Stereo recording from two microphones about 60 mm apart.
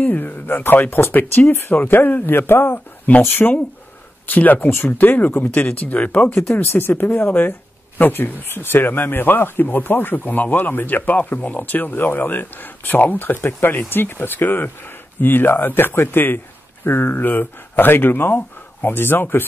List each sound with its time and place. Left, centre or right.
0.0 s speech: left
4.9 s speech: left
6.5 s speech: left